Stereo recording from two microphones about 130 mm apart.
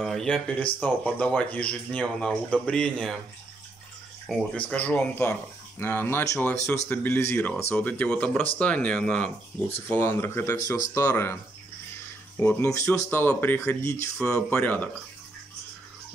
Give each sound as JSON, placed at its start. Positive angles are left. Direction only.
{"t": 0.0, "sound": "speech", "side_deg": 0}
{"t": 4.6, "sound": "speech", "side_deg": 10}
{"t": 12.4, "sound": "speech", "side_deg": 20}